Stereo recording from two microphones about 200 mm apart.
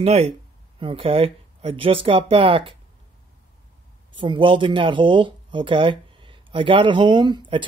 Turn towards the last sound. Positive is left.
turn(degrees=-20)  # may be behind; listen again after turning